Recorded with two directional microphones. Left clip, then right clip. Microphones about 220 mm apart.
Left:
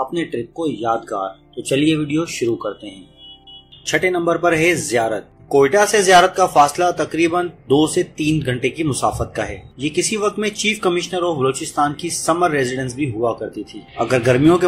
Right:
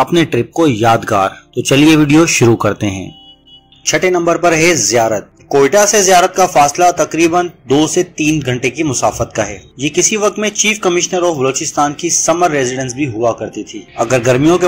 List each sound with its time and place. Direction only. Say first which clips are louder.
0.1 s speech: right 10 dB; 40° right (ahead or behind)
3.9 s speech: right 5 dB; 15° right (ahead or behind)